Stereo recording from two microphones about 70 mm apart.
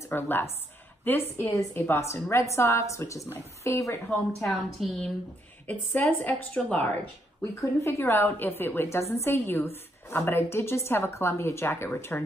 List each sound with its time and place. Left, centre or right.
0.1 s a woman's voice: left
1.7 s a woman's voice: left
4.5 s a woman's voice: centre
5.7 s a woman's voice: left
7.8 s a woman's voice: left
12.1 s a woman's voice: left